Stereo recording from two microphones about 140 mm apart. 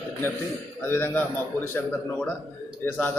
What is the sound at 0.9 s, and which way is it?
Speech, 15° left (ahead or behind).